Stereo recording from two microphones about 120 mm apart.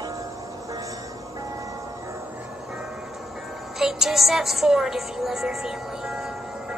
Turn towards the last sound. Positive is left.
turn(degrees=-5)  # may be behind; listen again after turning